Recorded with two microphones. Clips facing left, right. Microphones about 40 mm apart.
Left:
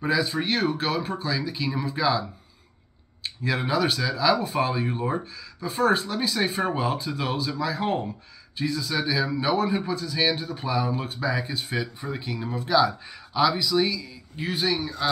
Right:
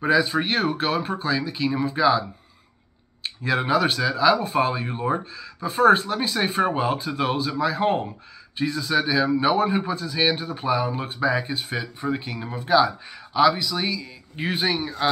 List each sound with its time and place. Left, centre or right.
0.0 s speech: centre
3.3 s speech: centre
14.3 s speech: right